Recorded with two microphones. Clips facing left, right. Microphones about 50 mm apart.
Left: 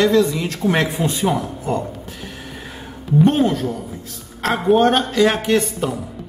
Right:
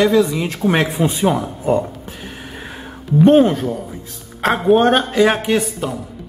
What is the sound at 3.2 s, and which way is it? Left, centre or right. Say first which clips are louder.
Speech: right 7 dB; centre.